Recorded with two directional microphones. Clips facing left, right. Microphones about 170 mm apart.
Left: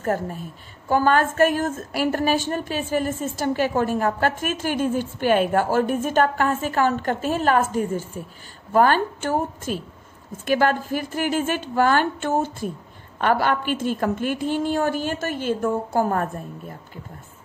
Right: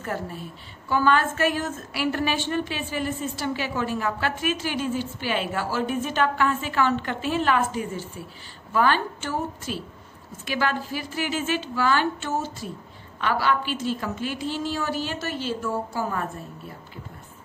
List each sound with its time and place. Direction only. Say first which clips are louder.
0.0 s a woman's voice: left 6 dB; 45° left (ahead or behind)